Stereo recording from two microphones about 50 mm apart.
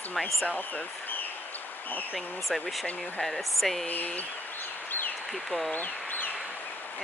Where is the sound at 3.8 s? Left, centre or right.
Left.